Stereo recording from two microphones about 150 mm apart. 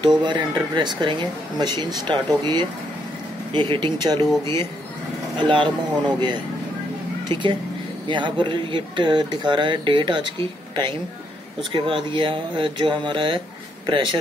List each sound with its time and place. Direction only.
0.0 s speech: 30° right (ahead or behind)
5.4 s speech: 30° right (ahead or behind)
8.1 s speech: 30° right (ahead or behind)
11.7 s speech: 35° right (ahead or behind)